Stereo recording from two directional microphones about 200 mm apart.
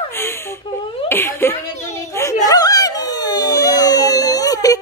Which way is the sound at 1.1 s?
10° left (ahead or behind).